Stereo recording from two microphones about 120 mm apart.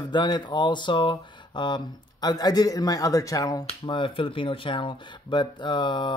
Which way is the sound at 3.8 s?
45° left (ahead or behind).